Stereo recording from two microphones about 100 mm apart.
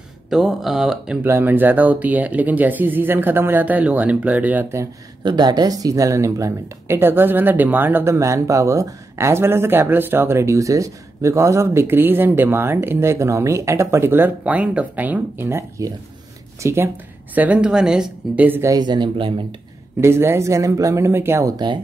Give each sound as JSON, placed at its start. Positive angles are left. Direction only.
{"t": 0.3, "sound": "speech", "side_deg": -5}
{"t": 1.2, "sound": "speech", "side_deg": -20}
{"t": 5.2, "sound": "speech", "side_deg": -45}
{"t": 16.6, "sound": "speech", "side_deg": -25}
{"t": 18.8, "sound": "speech", "side_deg": -50}
{"t": 20.0, "sound": "speech", "side_deg": -25}
{"t": 21.5, "sound": "speech", "side_deg": -45}